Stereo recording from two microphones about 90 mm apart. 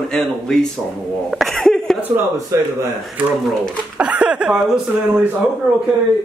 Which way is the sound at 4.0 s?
10° right (ahead or behind).